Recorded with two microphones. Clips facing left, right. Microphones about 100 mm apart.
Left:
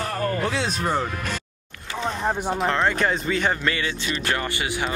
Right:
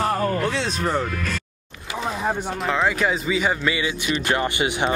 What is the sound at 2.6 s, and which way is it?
Speech, 5° right (ahead or behind).